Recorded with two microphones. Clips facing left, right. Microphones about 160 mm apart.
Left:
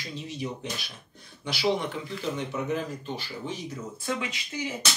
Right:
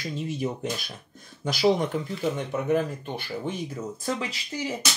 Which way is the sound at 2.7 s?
55° right (ahead or behind).